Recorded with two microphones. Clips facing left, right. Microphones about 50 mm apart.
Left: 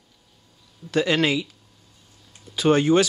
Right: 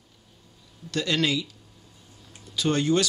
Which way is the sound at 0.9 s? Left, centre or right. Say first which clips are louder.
Left 5 dB; centre.